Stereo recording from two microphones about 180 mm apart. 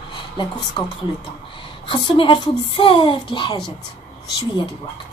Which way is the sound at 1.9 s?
30° left (ahead or behind).